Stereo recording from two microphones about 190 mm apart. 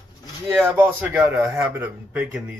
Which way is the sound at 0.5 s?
10° right (ahead or behind).